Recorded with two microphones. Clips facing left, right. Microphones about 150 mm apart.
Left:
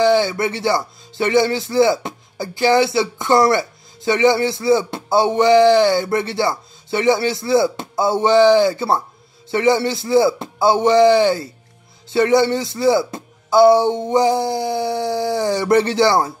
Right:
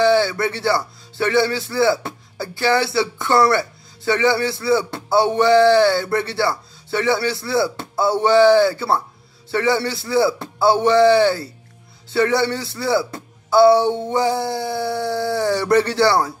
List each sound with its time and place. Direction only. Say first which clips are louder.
0.0 s speech: left 1 dB; 20° left (ahead or behind)